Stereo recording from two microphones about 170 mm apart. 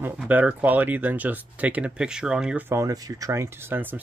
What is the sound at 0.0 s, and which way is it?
Speech, 10° right (ahead or behind).